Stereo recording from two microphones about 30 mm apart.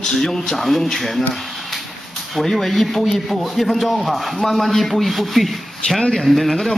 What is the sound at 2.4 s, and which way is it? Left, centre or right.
Speech, centre.